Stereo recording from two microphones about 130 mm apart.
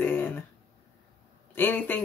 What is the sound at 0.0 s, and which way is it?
Throat clearing, 15° left (ahead or behind).